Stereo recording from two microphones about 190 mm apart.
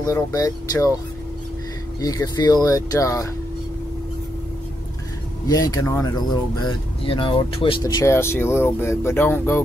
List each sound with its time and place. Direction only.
0.0 s speech: 20° left (ahead or behind)
2.0 s speech: 20° left (ahead or behind)
5.5 s speech: 20° left (ahead or behind)